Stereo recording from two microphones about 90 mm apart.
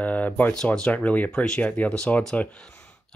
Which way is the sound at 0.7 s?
15° left (ahead or behind).